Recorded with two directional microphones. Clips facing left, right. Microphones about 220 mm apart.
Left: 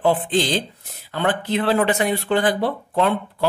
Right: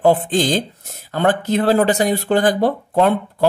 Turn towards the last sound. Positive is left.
turn(degrees=-45)  # may be behind; listen again after turning